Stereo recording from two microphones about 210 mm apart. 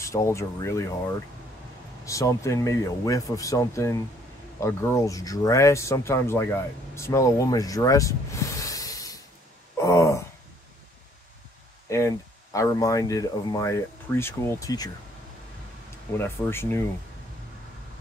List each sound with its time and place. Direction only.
0.0 s speech: 15° left (ahead or behind)
9.8 s a sound: 15° left (ahead or behind)
12.5 s speech: 15° left (ahead or behind)
16.1 s speech: 10° left (ahead or behind)